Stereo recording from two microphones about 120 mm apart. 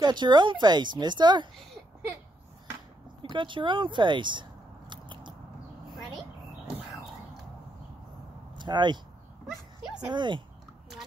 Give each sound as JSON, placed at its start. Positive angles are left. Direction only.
{"t": 0.0, "sound": "a woman's voice", "side_deg": -40}
{"t": 3.2, "sound": "a sound", "side_deg": -40}
{"t": 8.5, "sound": "speech", "side_deg": -40}
{"t": 9.5, "sound": "speech", "side_deg": 0}
{"t": 10.0, "sound": "a woman's voice", "side_deg": -40}